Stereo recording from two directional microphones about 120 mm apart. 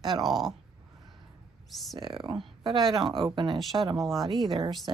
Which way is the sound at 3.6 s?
Centre (ahead or behind).